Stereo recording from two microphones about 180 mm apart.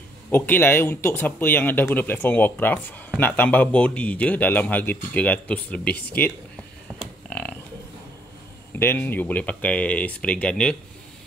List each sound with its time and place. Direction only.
0.3 s speech: 10° left (ahead or behind)
7.0 s a sound: 5° left (ahead or behind)
8.7 s speech: 10° left (ahead or behind)